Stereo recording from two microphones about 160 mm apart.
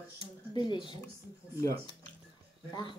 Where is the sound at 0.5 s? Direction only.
30° left (ahead or behind).